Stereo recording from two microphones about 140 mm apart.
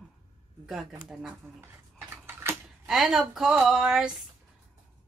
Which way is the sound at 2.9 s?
Centre (ahead or behind).